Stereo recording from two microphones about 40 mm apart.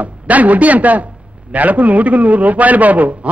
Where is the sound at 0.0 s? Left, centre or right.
Right.